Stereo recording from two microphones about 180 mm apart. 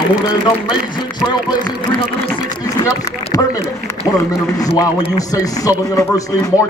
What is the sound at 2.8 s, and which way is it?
Speech, 20° left (ahead or behind).